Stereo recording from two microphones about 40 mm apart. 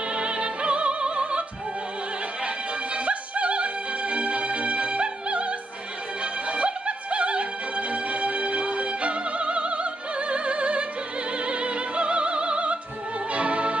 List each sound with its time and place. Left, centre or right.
0.1 s music: right
2.4 s opera: right
6.5 s opera: right
11.4 s music: right